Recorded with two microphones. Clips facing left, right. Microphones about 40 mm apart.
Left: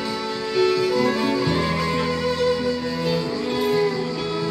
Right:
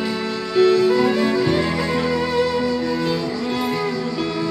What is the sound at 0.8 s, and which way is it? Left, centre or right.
Music, right.